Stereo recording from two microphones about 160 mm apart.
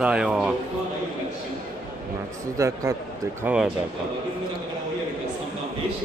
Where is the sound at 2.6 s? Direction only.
20° right (ahead or behind).